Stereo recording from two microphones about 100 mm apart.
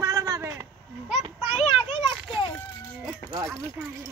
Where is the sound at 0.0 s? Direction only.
35° right (ahead or behind).